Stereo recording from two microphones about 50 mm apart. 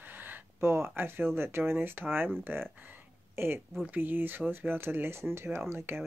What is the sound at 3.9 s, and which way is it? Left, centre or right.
Speech, right.